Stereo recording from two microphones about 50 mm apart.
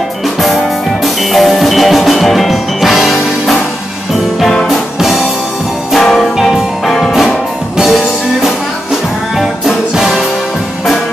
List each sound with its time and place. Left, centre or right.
1.3 s music: centre
4.6 s music: centre
5.9 s music: centre
7.7 s music: centre
9.4 s music: centre